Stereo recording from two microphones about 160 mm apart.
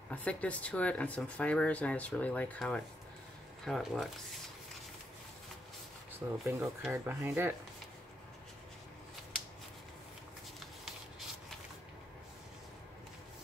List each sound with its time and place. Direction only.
0.1 s speech: 10° left (ahead or behind)
6.1 s speech: 15° right (ahead or behind)
10.6 s shuffling cards: centre (ahead or behind)